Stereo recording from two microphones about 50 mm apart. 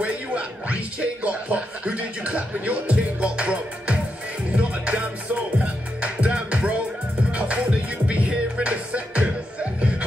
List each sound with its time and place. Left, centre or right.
0.0 s speech: right
4.6 s music: right